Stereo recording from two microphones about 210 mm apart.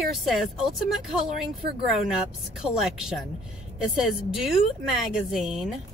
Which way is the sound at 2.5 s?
Centre (ahead or behind).